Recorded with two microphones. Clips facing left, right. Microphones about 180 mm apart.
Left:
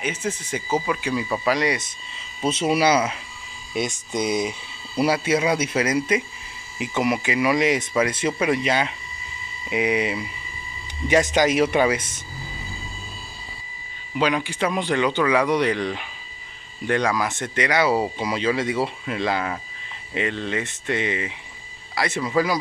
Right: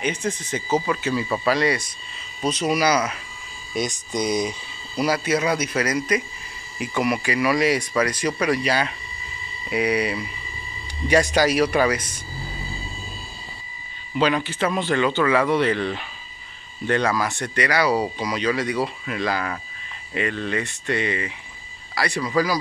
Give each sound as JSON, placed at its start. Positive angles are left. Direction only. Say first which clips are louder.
{"t": 0.0, "sound": "speech", "louder": "right 2 dB", "side_deg": 5}
{"t": 4.1, "sound": "speech", "louder": "even", "side_deg": 5}
{"t": 4.9, "sound": "speech", "louder": "left 1 dB", "side_deg": 25}
{"t": 14.1, "sound": "speech", "louder": "right 1 dB", "side_deg": 10}